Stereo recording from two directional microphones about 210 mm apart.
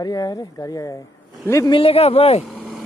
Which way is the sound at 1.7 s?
25° left (ahead or behind).